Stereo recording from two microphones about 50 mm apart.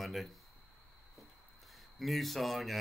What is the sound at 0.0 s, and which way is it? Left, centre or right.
Speech, centre.